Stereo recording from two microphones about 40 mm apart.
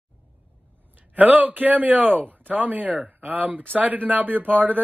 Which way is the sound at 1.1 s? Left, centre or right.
Right.